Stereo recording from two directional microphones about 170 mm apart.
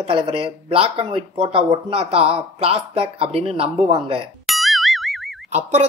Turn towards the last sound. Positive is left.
turn(degrees=-40)  # may be behind; listen again after turning